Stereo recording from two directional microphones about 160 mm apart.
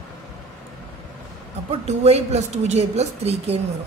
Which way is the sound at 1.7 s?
40° right (ahead or behind).